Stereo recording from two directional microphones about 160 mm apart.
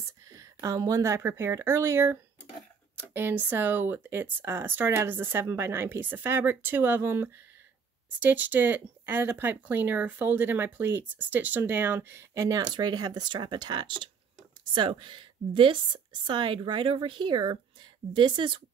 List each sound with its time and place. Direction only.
0.3 s a woman's voice: 20° right (ahead or behind)